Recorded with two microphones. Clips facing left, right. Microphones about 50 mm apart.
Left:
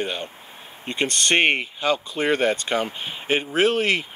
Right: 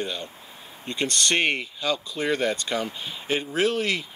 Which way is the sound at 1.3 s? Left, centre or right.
Left.